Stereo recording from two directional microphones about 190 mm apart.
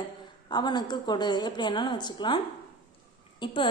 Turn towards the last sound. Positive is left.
turn(degrees=25)  # may be behind; listen again after turning